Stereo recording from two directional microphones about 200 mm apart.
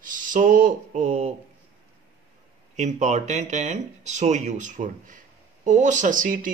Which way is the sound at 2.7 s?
35° right (ahead or behind).